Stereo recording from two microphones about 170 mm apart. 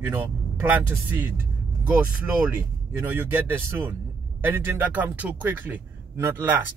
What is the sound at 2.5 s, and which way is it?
Speech, 15° right (ahead or behind).